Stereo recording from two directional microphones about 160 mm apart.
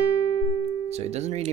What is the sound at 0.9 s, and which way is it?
Speech, 45° right (ahead or behind).